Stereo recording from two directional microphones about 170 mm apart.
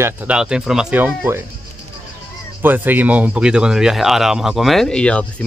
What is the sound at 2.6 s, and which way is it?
Speech, 10° right (ahead or behind).